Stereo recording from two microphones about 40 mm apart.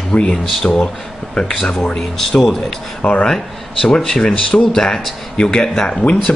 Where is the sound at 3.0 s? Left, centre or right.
Left.